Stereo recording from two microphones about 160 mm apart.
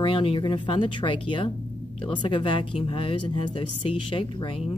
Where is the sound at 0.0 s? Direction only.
35° left (ahead or behind).